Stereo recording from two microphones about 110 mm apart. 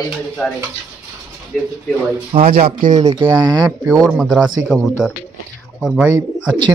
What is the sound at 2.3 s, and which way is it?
Speech, 75° right (ahead or behind).